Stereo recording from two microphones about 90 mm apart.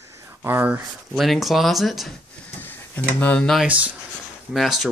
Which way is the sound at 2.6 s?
20° left (ahead or behind).